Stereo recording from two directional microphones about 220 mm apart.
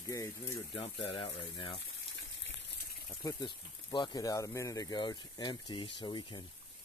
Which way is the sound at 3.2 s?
20° left (ahead or behind).